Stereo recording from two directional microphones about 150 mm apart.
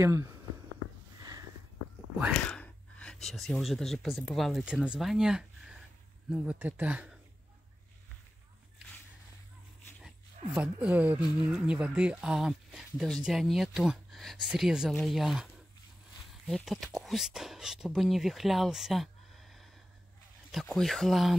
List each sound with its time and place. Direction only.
0.0 s speech: 20° right (ahead or behind)
2.4 s speech: 10° left (ahead or behind); by 7.2 s 10° right (ahead or behind)
10.0 s speech: 5° right (ahead or behind)
20.6 s speech: centre (ahead or behind)